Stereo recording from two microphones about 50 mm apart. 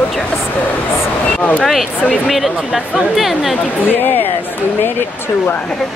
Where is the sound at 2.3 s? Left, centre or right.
Centre.